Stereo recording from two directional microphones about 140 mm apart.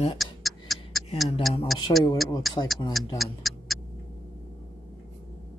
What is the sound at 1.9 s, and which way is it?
Speech, 40° left (ahead or behind).